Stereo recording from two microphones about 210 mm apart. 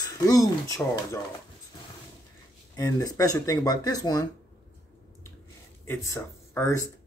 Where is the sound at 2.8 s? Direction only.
15° left (ahead or behind).